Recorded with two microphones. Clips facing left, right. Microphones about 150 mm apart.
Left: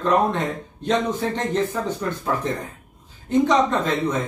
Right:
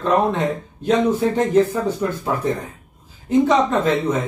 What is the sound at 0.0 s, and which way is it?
A man's voice, centre (ahead or behind).